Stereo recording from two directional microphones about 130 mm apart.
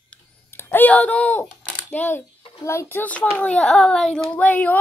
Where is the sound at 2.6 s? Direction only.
20° left (ahead or behind).